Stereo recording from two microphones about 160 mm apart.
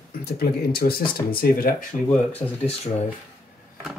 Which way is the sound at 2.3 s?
40° left (ahead or behind).